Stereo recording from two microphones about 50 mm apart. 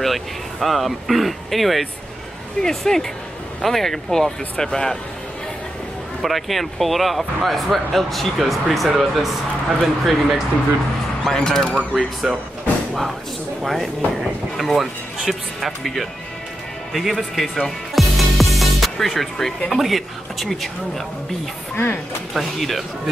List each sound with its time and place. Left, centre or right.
0.0 s speech: centre
6.2 s speech: centre
11.2 s speech: centre
12.2 s speech: centre
13.6 s speech: centre
16.9 s music: centre
19.7 s speech: centre
21.7 s speech: left
22.3 s speech: centre